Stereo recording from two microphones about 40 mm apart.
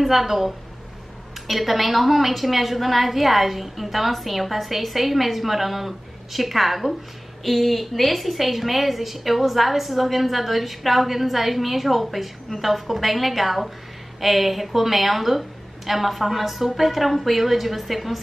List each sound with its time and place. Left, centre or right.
0.0 s a woman's voice: centre